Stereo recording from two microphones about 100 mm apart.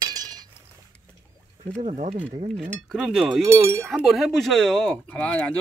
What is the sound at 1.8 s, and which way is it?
Speech, 90° right.